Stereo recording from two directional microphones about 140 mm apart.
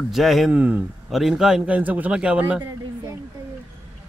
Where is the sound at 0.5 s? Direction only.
10° right (ahead or behind).